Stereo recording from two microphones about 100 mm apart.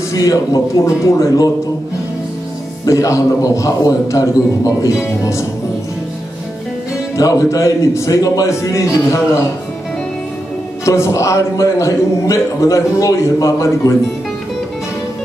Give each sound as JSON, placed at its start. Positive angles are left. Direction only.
{"t": 0.1, "sound": "a man's voice", "side_deg": 35}
{"t": 2.8, "sound": "a man's voice", "side_deg": 35}
{"t": 5.2, "sound": "music", "side_deg": 30}
{"t": 7.2, "sound": "a man's voice", "side_deg": 30}
{"t": 10.9, "sound": "a man's voice", "side_deg": 30}